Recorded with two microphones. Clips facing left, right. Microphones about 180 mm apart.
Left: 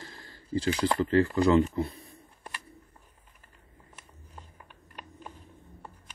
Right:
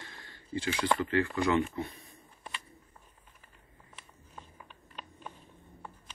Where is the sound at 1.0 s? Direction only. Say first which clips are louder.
Left 6 dB; 35° left (ahead or behind).